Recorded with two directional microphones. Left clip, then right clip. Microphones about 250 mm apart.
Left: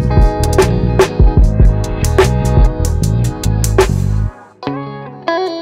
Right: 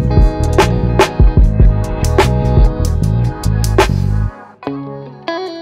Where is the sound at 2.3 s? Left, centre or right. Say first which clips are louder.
Even; left.